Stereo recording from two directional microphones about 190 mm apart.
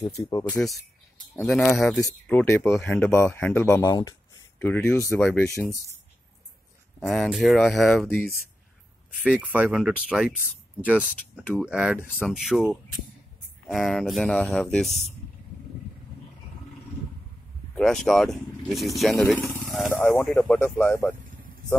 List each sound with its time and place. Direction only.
0.2 s speech: 20° left (ahead or behind)
7.0 s speech: 5° left (ahead or behind)
9.2 s speech: 5° right (ahead or behind)
17.7 s speech: 5° left (ahead or behind)